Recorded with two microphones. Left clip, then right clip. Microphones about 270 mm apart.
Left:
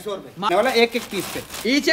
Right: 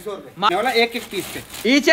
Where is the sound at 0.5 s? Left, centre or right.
Left.